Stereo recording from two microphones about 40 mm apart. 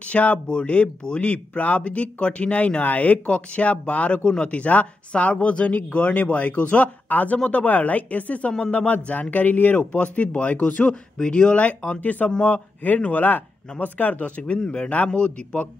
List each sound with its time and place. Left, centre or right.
0.0 s a man's voice: left
3.3 s speech: left
9.9 s a man's voice: left
12.0 s speech: left
14.6 s a man's voice: left